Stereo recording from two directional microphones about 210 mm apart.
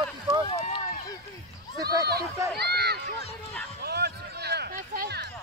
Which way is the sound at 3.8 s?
50° right (ahead or behind).